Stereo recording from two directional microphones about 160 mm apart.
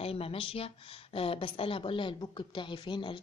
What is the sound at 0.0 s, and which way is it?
Speech, 35° left (ahead or behind).